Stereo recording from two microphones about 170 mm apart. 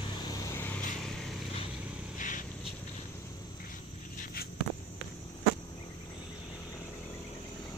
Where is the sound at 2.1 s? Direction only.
50° left (ahead or behind).